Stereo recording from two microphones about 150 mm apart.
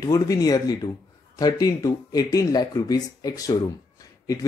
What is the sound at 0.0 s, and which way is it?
Speech, 25° left (ahead or behind).